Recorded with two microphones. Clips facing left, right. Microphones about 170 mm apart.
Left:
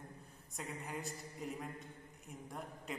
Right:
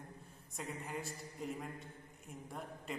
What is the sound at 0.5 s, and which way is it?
A man's voice, centre (ahead or behind).